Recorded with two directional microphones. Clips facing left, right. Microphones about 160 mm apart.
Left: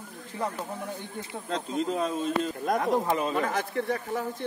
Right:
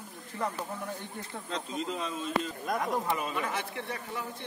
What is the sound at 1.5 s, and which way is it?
Speech, 45° left (ahead or behind).